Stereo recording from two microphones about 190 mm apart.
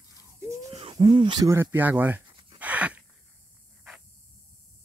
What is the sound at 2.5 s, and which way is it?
Gasp, 10° right (ahead or behind).